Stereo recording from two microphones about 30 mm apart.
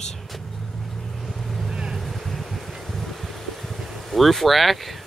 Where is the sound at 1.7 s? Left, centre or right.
Right.